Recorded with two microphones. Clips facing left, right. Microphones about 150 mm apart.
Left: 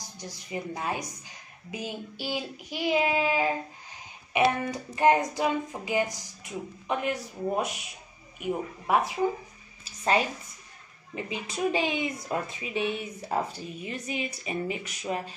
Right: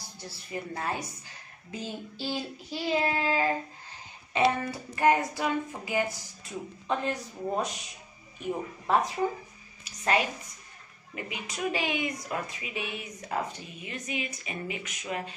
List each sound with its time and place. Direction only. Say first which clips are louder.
0.2 s a woman's voice: left 2 dB; 15° left (ahead or behind)
9.8 s a sound: left 2 dB; 30° left (ahead or behind)
11.1 s a woman's voice: left 4 dB; 25° left (ahead or behind)